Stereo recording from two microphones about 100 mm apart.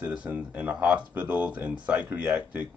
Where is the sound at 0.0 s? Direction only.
10° right (ahead or behind).